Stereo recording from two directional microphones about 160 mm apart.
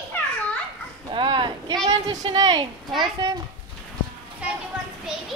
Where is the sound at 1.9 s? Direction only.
25° right (ahead or behind).